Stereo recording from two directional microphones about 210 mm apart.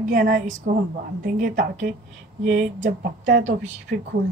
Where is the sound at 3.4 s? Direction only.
35° right (ahead or behind).